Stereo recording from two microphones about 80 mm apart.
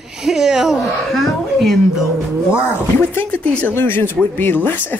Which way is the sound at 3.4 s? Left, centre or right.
Centre.